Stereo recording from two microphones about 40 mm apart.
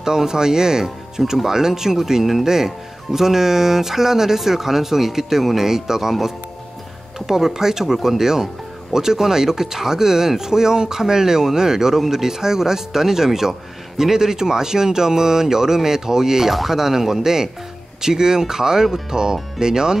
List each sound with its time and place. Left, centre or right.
0.0 s speech: centre